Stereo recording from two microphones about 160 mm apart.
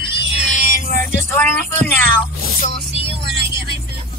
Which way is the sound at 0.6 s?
55° left (ahead or behind).